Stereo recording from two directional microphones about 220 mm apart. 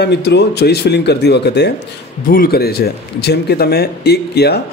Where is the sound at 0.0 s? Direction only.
50° left (ahead or behind).